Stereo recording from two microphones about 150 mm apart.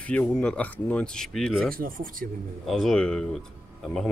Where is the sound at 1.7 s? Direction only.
70° right (ahead or behind).